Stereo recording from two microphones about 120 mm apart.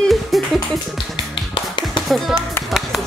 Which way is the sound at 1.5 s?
40° left (ahead or behind).